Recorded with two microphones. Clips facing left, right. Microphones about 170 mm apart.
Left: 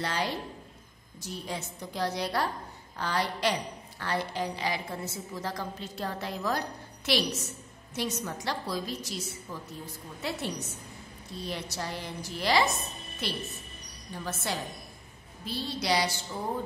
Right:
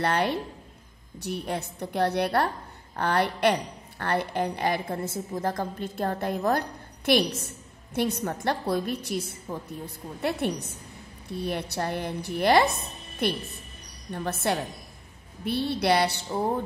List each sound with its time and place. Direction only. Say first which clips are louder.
0.0 s a woman's voice: right 6 dB; 60° right (ahead or behind)